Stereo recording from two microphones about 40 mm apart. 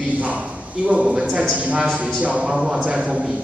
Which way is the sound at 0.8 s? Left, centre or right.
Right.